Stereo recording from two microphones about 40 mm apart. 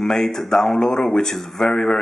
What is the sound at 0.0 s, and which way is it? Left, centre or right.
A man's voice, centre.